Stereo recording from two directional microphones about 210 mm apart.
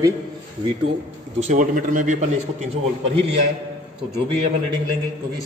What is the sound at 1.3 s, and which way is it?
Speech, 35° right (ahead or behind).